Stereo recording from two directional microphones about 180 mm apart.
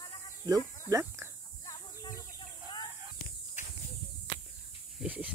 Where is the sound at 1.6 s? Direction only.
20° left (ahead or behind).